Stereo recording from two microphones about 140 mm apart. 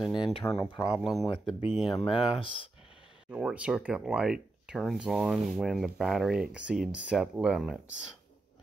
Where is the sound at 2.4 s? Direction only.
40° left (ahead or behind).